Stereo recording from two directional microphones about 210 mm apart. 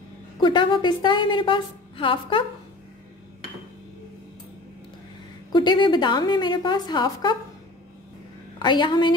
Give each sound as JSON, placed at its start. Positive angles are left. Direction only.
{"t": 0.4, "sound": "a woman's voice", "side_deg": 20}
{"t": 5.5, "sound": "a woman's voice", "side_deg": 20}
{"t": 8.5, "sound": "a woman's voice", "side_deg": 20}